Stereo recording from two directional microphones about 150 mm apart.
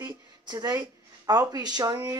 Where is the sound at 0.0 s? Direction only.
25° right (ahead or behind).